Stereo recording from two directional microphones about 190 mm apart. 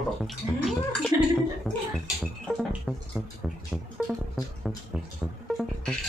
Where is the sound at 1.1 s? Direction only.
15° right (ahead or behind).